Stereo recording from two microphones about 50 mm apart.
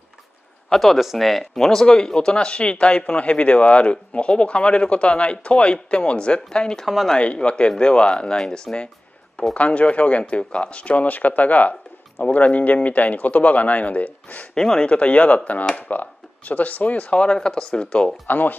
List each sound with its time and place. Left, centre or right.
0.7 s speech: centre
9.5 s speech: left
14.5 s speech: centre
18.2 s speech: left